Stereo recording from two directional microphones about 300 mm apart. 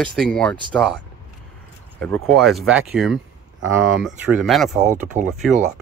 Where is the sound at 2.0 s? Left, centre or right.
Centre.